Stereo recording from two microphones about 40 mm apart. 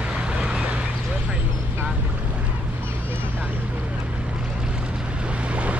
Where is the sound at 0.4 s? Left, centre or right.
Right.